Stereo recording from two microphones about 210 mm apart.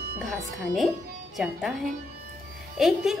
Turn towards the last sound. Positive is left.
turn(degrees=0)  # may be behind; listen again after turning